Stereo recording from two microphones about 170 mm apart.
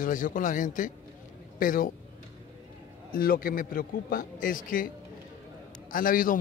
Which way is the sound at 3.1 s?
55° left (ahead or behind).